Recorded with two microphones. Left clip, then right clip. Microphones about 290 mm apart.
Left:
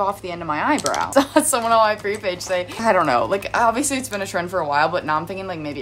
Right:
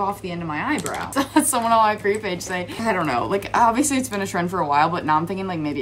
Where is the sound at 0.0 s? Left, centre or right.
Centre.